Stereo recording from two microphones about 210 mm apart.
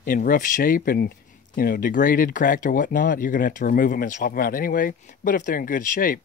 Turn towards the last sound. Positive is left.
turn(degrees=40)  # may be behind; listen again after turning